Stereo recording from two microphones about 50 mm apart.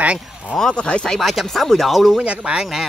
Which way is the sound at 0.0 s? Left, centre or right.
Right.